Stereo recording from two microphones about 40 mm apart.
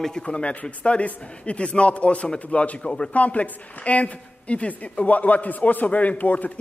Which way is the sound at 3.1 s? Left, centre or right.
Left.